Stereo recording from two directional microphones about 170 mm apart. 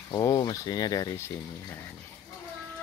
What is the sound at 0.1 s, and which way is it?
Speech, 20° left (ahead or behind).